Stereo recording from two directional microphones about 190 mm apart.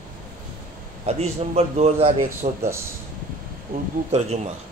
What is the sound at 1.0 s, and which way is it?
A man's voice, 35° right (ahead or behind).